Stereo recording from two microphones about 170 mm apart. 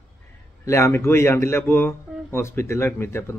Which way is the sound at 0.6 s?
15° left (ahead or behind).